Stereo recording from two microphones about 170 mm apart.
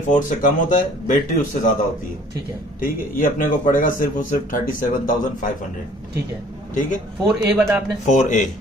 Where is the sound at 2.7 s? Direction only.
55° left (ahead or behind).